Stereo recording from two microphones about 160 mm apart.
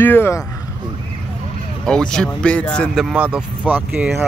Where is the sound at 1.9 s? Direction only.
5° left (ahead or behind).